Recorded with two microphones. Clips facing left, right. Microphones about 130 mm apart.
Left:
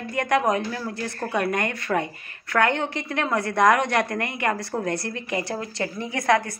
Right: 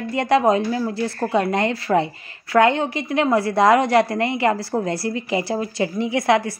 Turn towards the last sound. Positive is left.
turn(degrees=-20)  # may be behind; listen again after turning